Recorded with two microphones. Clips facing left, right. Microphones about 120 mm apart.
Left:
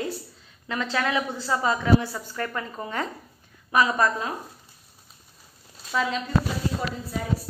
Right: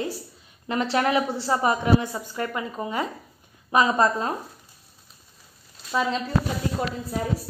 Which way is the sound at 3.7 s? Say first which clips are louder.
Right 2 dB; 25° right (ahead or behind).